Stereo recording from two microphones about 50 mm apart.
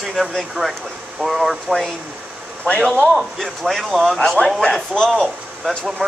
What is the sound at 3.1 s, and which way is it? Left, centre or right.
Speech, centre.